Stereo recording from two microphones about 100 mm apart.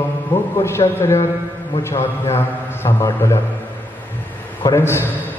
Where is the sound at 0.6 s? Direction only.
25° left (ahead or behind).